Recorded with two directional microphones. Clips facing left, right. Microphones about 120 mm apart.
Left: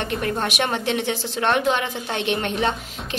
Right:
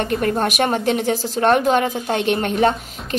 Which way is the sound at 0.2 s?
45° right (ahead or behind).